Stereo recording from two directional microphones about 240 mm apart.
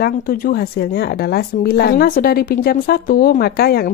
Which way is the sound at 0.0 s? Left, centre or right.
Left.